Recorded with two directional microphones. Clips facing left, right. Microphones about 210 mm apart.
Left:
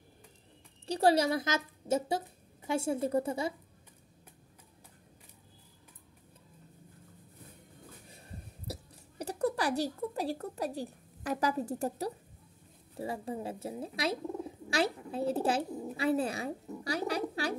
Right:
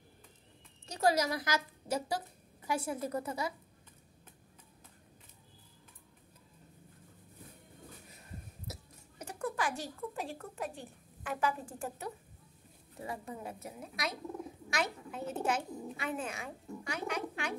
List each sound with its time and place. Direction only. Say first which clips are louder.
0.8 s speech: left 4 dB; 30° left (ahead or behind)
9.2 s speech: left 5 dB; 35° left (ahead or behind)